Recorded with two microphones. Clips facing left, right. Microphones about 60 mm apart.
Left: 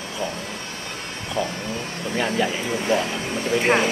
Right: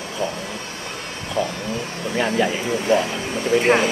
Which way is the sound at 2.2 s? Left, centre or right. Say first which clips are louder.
Right 3 dB; centre.